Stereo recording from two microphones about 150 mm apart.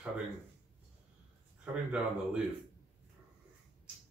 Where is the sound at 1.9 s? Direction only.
10° right (ahead or behind).